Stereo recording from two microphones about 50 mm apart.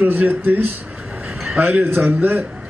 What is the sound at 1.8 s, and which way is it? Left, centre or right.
Speech, right.